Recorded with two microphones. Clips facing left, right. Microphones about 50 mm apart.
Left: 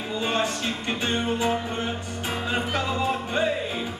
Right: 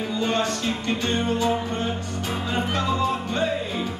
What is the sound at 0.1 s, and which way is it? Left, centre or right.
Music, centre.